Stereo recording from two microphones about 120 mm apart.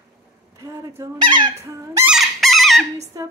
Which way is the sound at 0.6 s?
25° right (ahead or behind).